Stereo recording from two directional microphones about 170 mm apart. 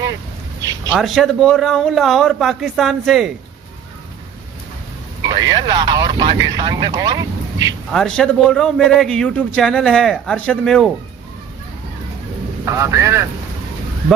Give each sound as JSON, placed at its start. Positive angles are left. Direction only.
{"t": 0.9, "sound": "a man's voice", "side_deg": 0}
{"t": 5.2, "sound": "speech", "side_deg": -25}
{"t": 7.9, "sound": "a man's voice", "side_deg": 5}
{"t": 12.6, "sound": "a man's voice", "side_deg": -15}